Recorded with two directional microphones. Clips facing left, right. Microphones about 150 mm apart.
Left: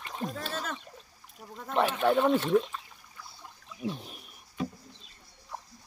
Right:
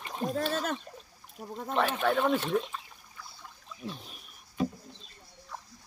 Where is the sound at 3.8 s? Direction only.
15° left (ahead or behind).